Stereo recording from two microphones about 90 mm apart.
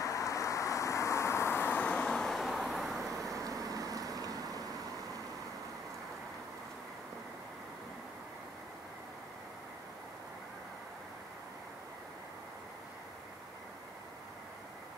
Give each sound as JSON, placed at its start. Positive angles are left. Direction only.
{"t": 0.0, "sound": "vehicle", "side_deg": 35}
{"t": 3.2, "sound": "vehicle", "side_deg": -40}